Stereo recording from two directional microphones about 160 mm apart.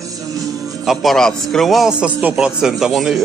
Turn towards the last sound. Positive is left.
turn(degrees=0)  # may be behind; listen again after turning